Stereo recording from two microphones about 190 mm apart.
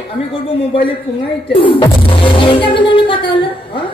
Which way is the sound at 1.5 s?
30° left (ahead or behind).